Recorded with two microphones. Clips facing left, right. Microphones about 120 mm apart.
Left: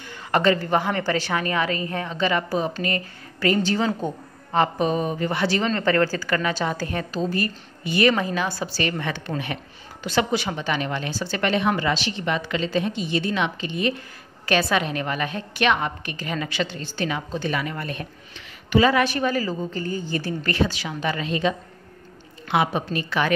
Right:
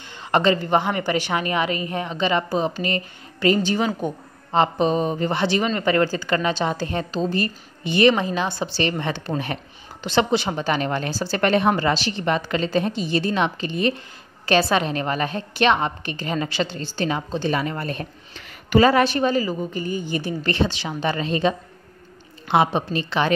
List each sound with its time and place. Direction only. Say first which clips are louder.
0.3 s a woman's voice: right 1 dB; 20° right (ahead or behind)
5.6 s a woman's voice: even; 10° right (ahead or behind)